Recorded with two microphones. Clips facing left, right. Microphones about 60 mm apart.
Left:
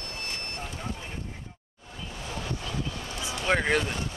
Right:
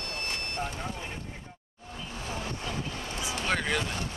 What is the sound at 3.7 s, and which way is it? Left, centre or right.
Speech, left.